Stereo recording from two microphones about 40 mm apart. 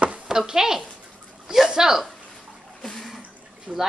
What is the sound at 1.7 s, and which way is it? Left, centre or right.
Speech, centre.